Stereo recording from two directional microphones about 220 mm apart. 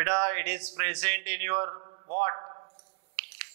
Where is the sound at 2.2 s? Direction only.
25° right (ahead or behind).